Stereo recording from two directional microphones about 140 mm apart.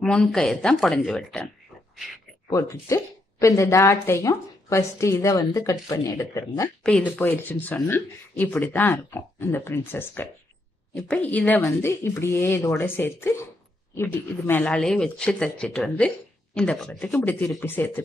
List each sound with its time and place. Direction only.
0.0 s a woman's voice: 5° left (ahead or behind)
2.5 s a woman's voice: 20° left (ahead or behind)
6.8 s speech: 10° left (ahead or behind)